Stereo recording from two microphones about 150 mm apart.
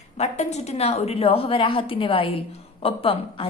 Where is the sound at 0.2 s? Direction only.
50° left (ahead or behind).